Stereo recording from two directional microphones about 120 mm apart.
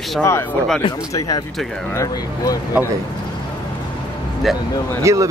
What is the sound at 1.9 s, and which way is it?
Speech, 30° left (ahead or behind).